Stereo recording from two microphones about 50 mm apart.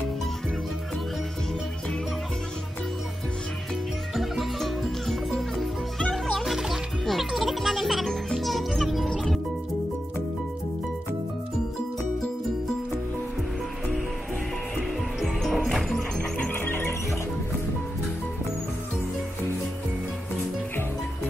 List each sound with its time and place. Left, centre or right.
4.1 s music: centre
6.4 s music: centre
15.2 s music: centre
16.2 s music: left
16.5 s music: left